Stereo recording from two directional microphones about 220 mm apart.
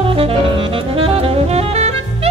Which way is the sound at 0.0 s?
25° right (ahead or behind).